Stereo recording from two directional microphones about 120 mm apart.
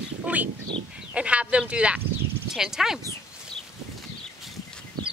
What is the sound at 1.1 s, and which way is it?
Speech, 10° right (ahead or behind).